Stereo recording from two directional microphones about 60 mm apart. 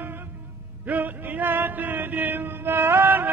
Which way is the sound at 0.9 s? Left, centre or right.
Right.